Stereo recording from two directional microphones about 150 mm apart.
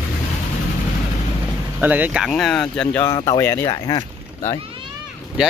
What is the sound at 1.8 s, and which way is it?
Speech, 10° right (ahead or behind).